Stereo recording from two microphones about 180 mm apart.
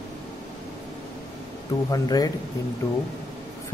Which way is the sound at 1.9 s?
20° left (ahead or behind).